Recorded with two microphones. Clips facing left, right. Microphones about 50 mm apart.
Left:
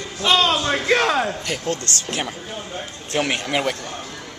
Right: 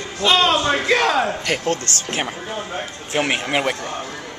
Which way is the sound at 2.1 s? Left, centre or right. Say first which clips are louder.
Right 3 dB; right.